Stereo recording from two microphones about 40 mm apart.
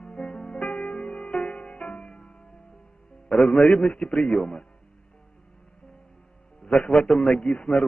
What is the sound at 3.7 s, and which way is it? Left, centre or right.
Speech, centre.